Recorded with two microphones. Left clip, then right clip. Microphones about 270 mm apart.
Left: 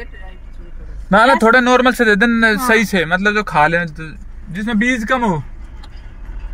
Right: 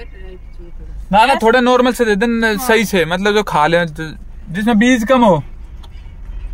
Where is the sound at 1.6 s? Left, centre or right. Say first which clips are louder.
Even; centre.